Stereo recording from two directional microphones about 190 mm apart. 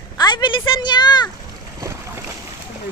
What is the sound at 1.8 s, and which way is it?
Boat, 15° right (ahead or behind).